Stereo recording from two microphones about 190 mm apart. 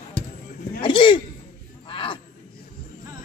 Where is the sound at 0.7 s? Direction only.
25° left (ahead or behind).